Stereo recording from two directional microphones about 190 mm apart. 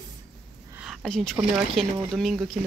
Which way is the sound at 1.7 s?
Centre (ahead or behind).